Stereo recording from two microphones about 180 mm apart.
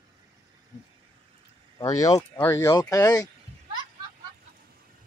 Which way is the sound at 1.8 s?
20° left (ahead or behind).